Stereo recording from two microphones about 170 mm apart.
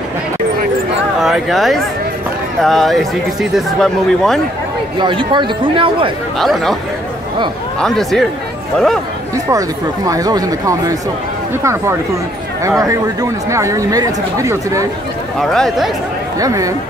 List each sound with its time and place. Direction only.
1.2 s speech: centre (ahead or behind)
4.9 s speech: 30° right (ahead or behind)
6.3 s speech: centre (ahead or behind)
7.8 s speech: centre (ahead or behind)
9.5 s speech: 20° right (ahead or behind)
15.3 s speech: 5° left (ahead or behind)
16.3 s speech: 20° right (ahead or behind)